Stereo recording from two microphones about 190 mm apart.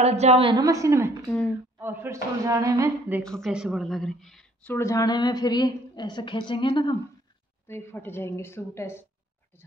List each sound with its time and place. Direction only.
0.0 s a woman's voice: 35° right (ahead or behind); by 3.3 s 15° right (ahead or behind)
3.3 s a woman's voice: centre (ahead or behind)
4.7 s a woman's voice: 15° left (ahead or behind)
7.6 s a woman's voice: 10° left (ahead or behind)